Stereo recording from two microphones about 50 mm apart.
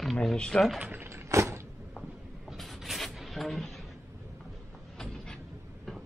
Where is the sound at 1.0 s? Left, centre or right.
Right.